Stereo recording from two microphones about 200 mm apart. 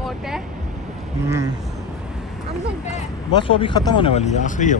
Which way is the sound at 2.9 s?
25° left (ahead or behind).